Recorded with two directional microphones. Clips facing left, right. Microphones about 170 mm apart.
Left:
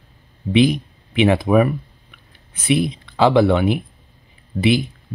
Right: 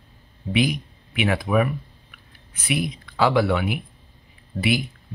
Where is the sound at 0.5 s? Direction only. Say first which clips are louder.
Left 7 dB; 25° left (ahead or behind).